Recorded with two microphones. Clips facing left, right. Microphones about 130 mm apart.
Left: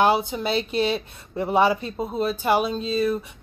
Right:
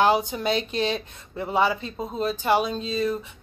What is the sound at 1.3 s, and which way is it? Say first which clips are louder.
Speech: left 3 dB; 20° left (ahead or behind).